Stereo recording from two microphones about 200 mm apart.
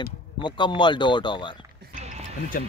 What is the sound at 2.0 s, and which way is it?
Music, 35° right (ahead or behind).